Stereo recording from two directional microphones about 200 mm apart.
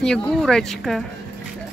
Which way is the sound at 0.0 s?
5° left (ahead or behind).